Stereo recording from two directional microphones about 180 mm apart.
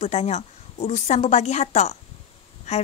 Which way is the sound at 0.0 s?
35° left (ahead or behind).